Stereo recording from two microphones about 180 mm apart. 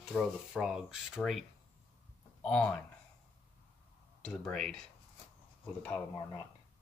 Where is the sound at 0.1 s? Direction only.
Centre (ahead or behind).